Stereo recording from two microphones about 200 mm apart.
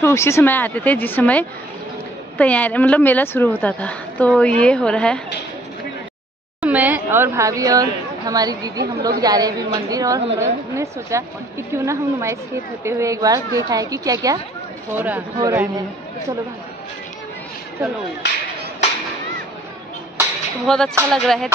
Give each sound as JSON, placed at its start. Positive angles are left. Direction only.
{"t": 0.0, "sound": "a woman's voice", "side_deg": 15}
{"t": 6.6, "sound": "speech", "side_deg": -10}
{"t": 20.6, "sound": "speech", "side_deg": 5}